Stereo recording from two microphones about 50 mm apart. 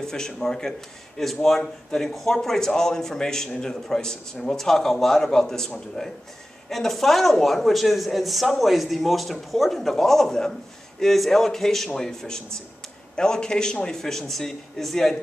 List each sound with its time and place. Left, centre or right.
0.0 s a man's voice: centre
6.7 s a man's voice: centre